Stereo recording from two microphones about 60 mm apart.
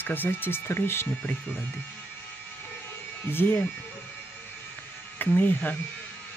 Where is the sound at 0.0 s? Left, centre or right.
Left.